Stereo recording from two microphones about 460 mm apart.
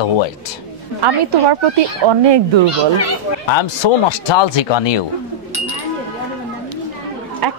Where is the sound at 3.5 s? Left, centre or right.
Left.